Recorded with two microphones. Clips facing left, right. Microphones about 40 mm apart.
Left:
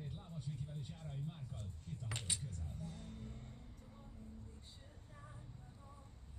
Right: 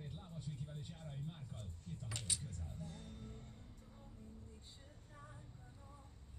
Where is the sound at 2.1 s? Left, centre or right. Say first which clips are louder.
Left 1 dB; left.